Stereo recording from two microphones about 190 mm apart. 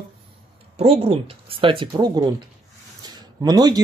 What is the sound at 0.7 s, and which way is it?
Speech, 30° right (ahead or behind).